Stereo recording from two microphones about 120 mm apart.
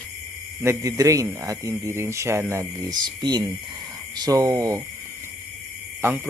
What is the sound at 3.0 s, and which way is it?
Speech, 35° right (ahead or behind).